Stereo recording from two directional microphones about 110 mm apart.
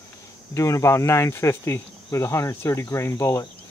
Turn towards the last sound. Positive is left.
turn(degrees=30)  # may be behind; listen again after turning